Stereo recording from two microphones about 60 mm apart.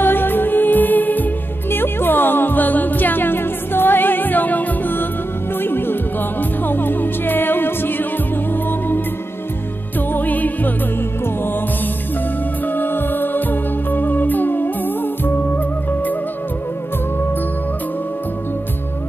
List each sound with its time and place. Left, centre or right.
0.0 s music: left
10.1 s music: left
12.6 s music: left